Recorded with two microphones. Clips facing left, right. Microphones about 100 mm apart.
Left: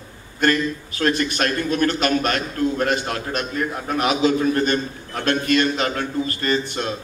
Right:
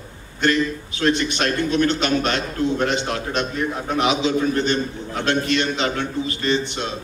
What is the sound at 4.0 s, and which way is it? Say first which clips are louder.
A man's voice: left 1 dB; 45° left (ahead or behind).